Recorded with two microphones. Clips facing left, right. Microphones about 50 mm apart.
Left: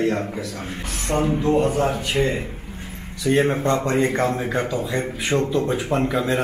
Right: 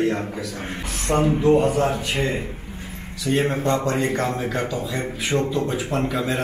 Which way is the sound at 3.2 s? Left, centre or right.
Left.